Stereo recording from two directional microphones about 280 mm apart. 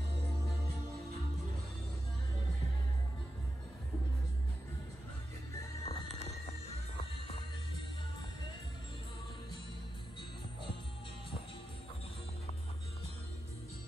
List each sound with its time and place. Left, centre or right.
5.9 s music: left